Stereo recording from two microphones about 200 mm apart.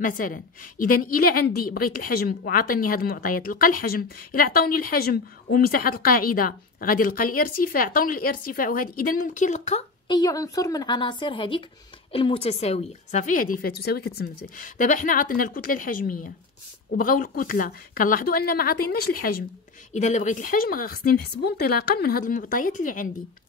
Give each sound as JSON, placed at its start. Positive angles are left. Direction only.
{"t": 0.0, "sound": "a woman's voice", "side_deg": 45}
{"t": 10.0, "sound": "a woman's voice", "side_deg": 20}
{"t": 13.1, "sound": "a woman's voice", "side_deg": 40}
{"t": 19.9, "sound": "a woman's voice", "side_deg": 35}